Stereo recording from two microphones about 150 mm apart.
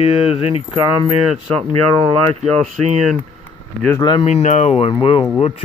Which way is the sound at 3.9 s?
30° left (ahead or behind).